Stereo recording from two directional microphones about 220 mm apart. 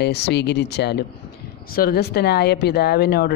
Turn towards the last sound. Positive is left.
turn(degrees=45)  # may be behind; listen again after turning